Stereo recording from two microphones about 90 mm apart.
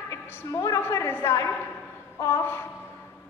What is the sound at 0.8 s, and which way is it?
A woman's voice, 25° left (ahead or behind).